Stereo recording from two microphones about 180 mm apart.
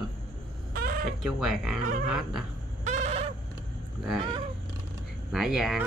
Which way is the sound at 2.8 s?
35° right (ahead or behind).